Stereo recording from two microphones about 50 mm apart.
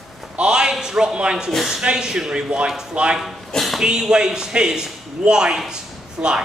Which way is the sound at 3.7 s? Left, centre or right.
Centre.